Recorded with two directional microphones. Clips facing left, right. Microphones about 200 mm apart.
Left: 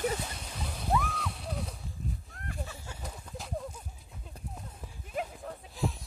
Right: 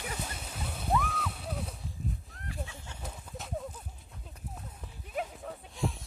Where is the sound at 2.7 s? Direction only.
10° left (ahead or behind).